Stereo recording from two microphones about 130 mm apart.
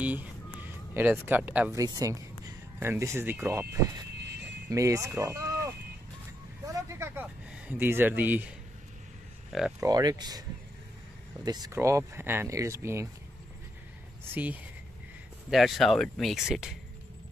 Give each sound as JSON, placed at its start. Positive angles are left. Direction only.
{"t": 0.0, "sound": "a sound", "side_deg": -10}
{"t": 1.7, "sound": "a sound", "side_deg": -25}
{"t": 2.9, "sound": "speech", "side_deg": -20}
{"t": 4.6, "sound": "speech", "side_deg": -25}
{"t": 6.7, "sound": "a sound", "side_deg": -20}
{"t": 9.5, "sound": "speech", "side_deg": -5}
{"t": 9.8, "sound": "speech", "side_deg": -30}
{"t": 11.4, "sound": "speech", "side_deg": -30}
{"t": 14.3, "sound": "speech", "side_deg": -10}
{"t": 15.5, "sound": "speech", "side_deg": 0}